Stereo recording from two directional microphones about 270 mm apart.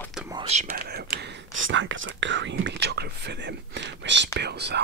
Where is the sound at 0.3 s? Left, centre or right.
Right.